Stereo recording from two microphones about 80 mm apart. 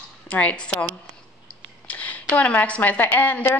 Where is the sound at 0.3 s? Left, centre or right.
Centre.